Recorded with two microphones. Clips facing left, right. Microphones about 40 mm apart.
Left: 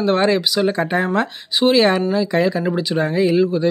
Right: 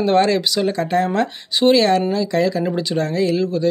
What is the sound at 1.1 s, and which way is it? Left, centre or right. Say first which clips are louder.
Speech: even; centre.